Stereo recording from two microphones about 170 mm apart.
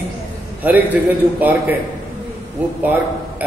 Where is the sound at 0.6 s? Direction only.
10° right (ahead or behind).